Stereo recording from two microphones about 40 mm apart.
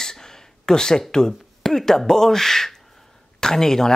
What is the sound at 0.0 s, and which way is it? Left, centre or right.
Speech, centre.